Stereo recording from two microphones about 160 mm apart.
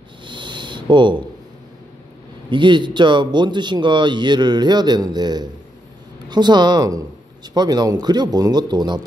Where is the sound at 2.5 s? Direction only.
30° right (ahead or behind).